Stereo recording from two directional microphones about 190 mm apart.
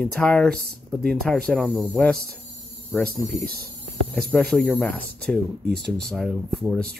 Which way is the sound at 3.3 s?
50° right (ahead or behind).